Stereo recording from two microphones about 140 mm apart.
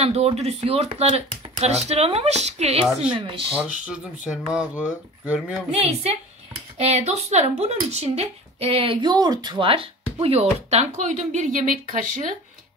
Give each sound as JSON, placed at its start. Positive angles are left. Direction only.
{"t": 0.0, "sound": "speech", "side_deg": -50}
{"t": 4.5, "sound": "speech", "side_deg": -10}
{"t": 5.7, "sound": "speech", "side_deg": -45}